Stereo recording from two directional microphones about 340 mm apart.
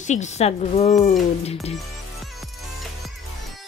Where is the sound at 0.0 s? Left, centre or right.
Left.